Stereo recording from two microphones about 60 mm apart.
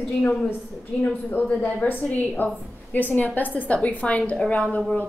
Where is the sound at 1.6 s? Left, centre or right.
Left.